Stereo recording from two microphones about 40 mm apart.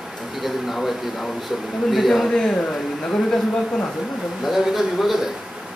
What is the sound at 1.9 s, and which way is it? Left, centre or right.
Speech, centre.